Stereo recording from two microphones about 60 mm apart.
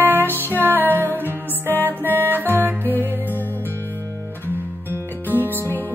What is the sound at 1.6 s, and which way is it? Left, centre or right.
Music, left.